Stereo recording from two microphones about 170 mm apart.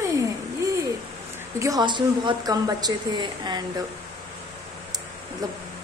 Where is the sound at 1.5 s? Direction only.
20° right (ahead or behind).